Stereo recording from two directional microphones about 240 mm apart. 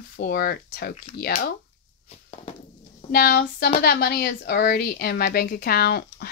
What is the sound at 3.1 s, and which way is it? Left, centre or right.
A woman's voice, left.